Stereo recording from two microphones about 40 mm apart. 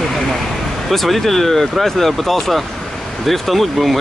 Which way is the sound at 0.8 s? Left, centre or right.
Centre.